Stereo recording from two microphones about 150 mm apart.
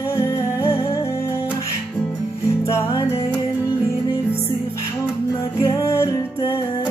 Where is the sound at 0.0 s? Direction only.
20° left (ahead or behind).